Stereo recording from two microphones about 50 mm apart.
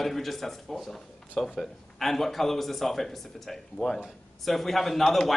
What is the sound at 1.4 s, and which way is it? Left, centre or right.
Speech, centre.